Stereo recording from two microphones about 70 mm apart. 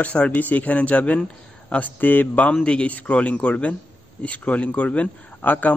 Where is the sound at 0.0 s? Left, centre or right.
Centre.